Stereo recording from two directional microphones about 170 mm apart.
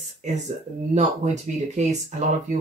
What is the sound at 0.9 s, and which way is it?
Speech, 45° right (ahead or behind).